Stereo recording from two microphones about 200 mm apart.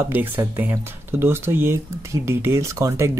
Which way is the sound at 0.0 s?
10° right (ahead or behind).